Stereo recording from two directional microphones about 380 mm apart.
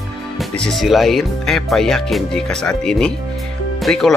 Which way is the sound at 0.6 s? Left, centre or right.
Centre.